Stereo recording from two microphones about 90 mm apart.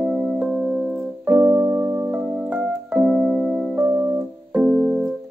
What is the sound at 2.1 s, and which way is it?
Keyboard, 15° right (ahead or behind).